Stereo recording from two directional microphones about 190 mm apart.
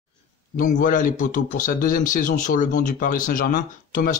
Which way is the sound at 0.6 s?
45° left (ahead or behind).